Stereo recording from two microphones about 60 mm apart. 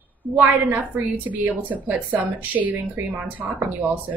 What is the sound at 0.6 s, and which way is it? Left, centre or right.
Speech, right.